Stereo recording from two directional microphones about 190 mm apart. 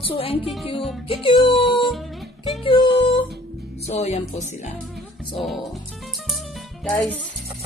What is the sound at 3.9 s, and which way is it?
Speech, 35° left (ahead or behind).